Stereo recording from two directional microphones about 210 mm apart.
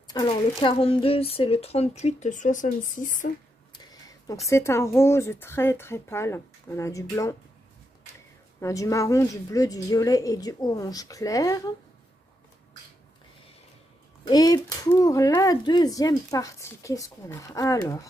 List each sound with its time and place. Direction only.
0.1 s speech: 20° left (ahead or behind); by 3.3 s 40° left (ahead or behind)
4.5 s speech: 10° left (ahead or behind)
14.2 s speech: 20° left (ahead or behind)